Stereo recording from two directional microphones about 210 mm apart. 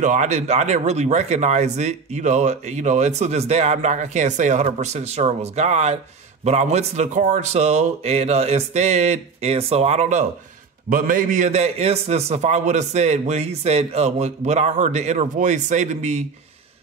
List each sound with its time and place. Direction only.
0.0 s speech: 35° right (ahead or behind)